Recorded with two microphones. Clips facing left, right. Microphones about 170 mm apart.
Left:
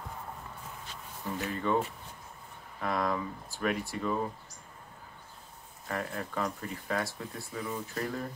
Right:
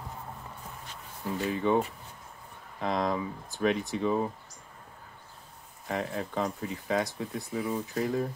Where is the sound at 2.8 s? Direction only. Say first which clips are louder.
Right 2 dB; 20° right (ahead or behind).